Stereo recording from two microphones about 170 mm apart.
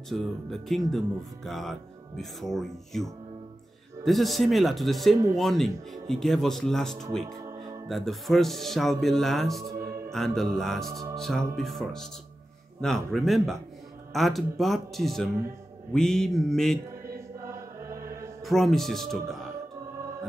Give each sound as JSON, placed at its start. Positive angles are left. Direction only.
{"t": 0.1, "sound": "speech", "side_deg": 0}
{"t": 17.5, "sound": "music", "side_deg": -15}
{"t": 18.4, "sound": "speech", "side_deg": 0}